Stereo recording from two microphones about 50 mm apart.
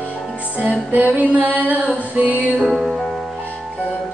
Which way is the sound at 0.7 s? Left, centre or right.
Right.